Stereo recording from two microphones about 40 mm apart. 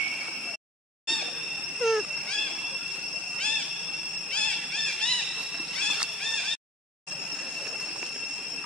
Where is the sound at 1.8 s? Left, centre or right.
Centre.